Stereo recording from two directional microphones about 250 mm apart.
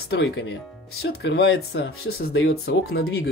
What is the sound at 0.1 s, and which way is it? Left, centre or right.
Speech, left.